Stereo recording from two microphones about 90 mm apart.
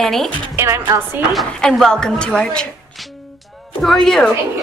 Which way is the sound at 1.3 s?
5° left (ahead or behind).